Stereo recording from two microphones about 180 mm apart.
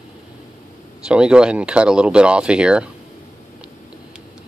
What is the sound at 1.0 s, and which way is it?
Speech, 5° right (ahead or behind).